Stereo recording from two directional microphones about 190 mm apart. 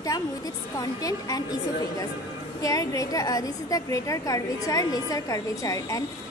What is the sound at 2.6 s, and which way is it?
A woman's voice, 15° left (ahead or behind).